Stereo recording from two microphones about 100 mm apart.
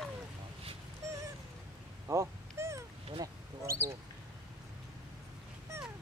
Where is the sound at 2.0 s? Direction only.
30° right (ahead or behind).